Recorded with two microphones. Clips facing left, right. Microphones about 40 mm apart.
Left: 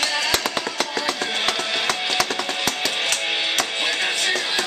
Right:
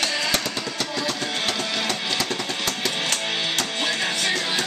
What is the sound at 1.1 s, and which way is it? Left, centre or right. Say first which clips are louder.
Music: left 3 dB; left.